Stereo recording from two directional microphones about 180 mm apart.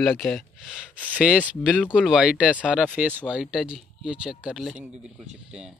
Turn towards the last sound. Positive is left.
turn(degrees=-5)  # may be behind; listen again after turning